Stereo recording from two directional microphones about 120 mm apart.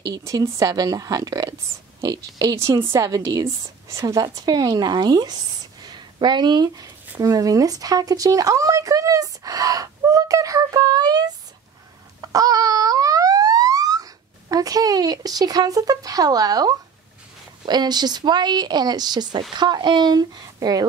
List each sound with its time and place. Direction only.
0.0 s a woman's voice: 30° right (ahead or behind)
12.2 s siren: 30° right (ahead or behind)
14.5 s speech: 30° right (ahead or behind)